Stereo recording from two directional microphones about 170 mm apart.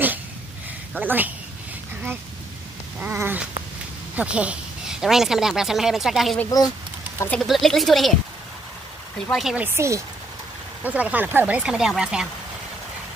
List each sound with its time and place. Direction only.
0.9 s speech: 10° right (ahead or behind)
3.0 s speech: 10° right (ahead or behind)
9.3 s speech: centre (ahead or behind)
9.8 s speech: 15° right (ahead or behind)